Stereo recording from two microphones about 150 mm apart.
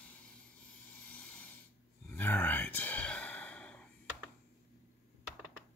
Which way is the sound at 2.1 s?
15° left (ahead or behind).